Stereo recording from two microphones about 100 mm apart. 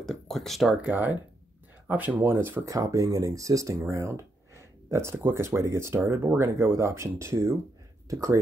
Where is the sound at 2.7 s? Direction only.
35° right (ahead or behind).